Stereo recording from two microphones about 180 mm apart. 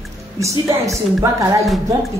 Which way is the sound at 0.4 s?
15° right (ahead or behind).